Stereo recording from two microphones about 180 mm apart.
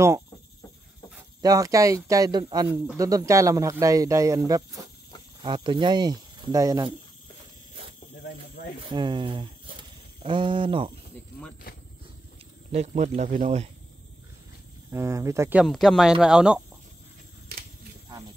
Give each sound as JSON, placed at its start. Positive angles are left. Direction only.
{"t": 1.4, "sound": "speech", "side_deg": -20}
{"t": 8.9, "sound": "speech", "side_deg": -25}
{"t": 11.7, "sound": "vehicle", "side_deg": 55}
{"t": 12.7, "sound": "speech", "side_deg": -40}
{"t": 14.9, "sound": "speech", "side_deg": -15}
{"t": 15.6, "sound": "speech", "side_deg": 0}